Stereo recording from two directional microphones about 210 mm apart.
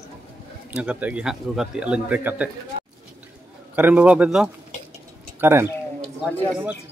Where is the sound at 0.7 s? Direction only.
5° right (ahead or behind).